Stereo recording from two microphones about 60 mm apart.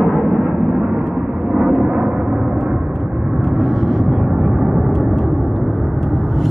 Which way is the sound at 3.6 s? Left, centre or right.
Centre.